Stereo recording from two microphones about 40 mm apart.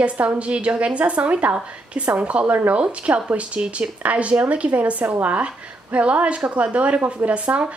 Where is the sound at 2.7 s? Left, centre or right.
Right.